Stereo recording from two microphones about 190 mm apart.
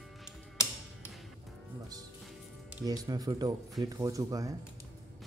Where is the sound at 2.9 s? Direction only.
20° right (ahead or behind).